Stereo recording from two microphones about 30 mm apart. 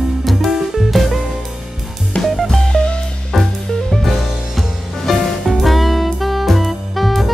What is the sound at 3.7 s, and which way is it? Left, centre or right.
Music, centre.